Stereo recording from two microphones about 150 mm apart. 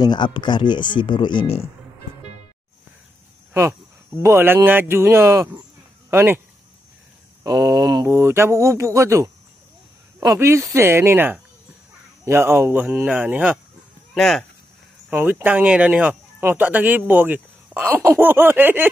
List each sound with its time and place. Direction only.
0.0 s speech: 30° left (ahead or behind)
4.2 s speech: 15° right (ahead or behind)
7.4 s speech: 25° right (ahead or behind)
14.1 s speech: centre (ahead or behind)
15.0 s speech: 15° right (ahead or behind)